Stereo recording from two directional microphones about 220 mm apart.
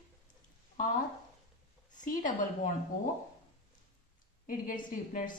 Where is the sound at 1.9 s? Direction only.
35° left (ahead or behind).